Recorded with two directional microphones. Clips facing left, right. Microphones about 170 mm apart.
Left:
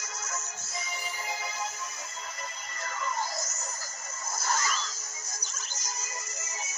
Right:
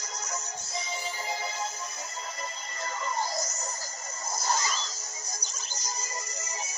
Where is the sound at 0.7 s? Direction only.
30° right (ahead or behind).